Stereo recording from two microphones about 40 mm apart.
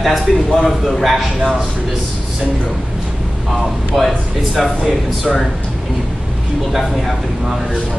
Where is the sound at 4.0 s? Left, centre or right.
Centre.